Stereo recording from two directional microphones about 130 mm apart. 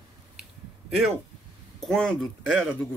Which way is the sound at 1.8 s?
5° left (ahead or behind).